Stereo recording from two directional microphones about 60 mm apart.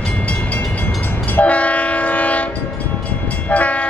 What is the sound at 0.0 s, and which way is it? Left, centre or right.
Train, left.